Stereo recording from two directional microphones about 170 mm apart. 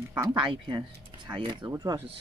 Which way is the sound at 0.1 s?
20° right (ahead or behind).